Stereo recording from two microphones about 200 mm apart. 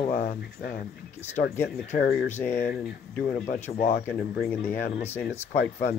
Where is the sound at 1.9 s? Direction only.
45° left (ahead or behind).